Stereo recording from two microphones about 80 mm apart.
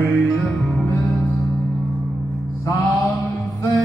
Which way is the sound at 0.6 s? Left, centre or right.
Centre.